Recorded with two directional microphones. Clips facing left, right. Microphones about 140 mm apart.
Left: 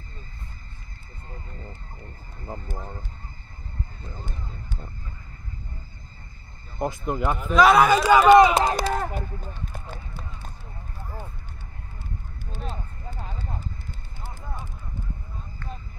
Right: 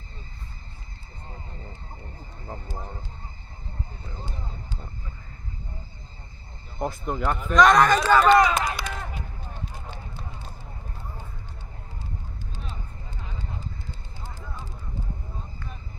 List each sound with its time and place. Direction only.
2.4 s speech: 15° left (ahead or behind)
7.1 s speech: 5° left (ahead or behind)
8.5 s speech: 30° left (ahead or behind)
8.7 s speech: 45° left (ahead or behind)